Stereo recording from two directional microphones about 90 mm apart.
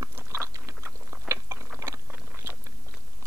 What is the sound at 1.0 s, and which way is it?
Chewing, 30° right (ahead or behind).